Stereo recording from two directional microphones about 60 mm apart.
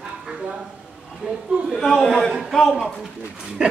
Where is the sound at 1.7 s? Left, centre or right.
Centre.